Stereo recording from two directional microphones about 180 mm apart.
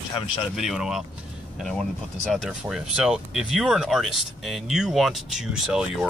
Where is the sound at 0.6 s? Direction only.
Centre (ahead or behind).